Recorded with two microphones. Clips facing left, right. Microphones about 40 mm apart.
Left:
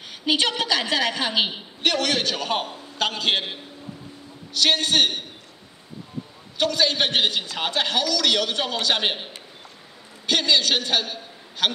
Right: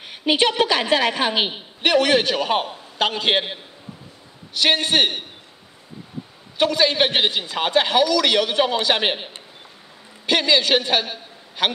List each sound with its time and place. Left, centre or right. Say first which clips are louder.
0.0 s a woman's voice: right 3 dB; right
4.6 s a woman's voice: right 2 dB; centre
6.6 s a woman's voice: right 4 dB; centre